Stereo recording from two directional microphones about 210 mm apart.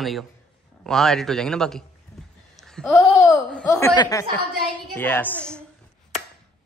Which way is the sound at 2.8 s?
15° left (ahead or behind).